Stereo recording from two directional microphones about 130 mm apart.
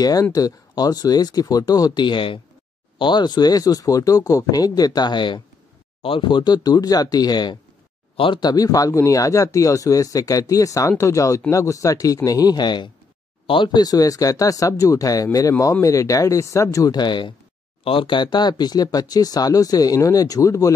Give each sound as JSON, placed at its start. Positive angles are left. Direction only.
{"t": 0.0, "sound": "speech", "side_deg": 30}